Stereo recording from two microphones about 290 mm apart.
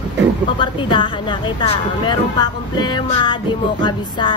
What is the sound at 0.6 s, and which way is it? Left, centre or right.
Music, centre.